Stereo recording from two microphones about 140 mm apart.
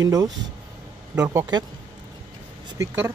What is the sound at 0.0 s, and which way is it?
Speech, 25° right (ahead or behind).